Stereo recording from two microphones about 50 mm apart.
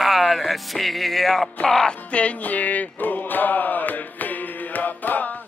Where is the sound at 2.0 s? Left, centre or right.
Left.